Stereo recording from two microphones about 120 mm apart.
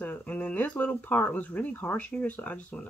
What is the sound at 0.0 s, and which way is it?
Speech, 15° left (ahead or behind).